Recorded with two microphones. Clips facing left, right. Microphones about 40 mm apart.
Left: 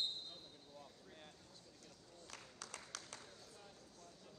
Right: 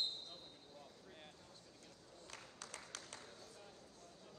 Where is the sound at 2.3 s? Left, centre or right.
Right.